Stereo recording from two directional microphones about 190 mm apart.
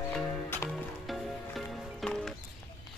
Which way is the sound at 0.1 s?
10° left (ahead or behind).